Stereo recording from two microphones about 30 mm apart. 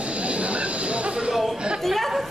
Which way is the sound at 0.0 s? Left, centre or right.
Right.